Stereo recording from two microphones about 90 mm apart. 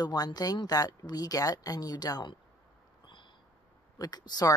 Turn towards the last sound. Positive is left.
turn(degrees=50)  # may be behind; listen again after turning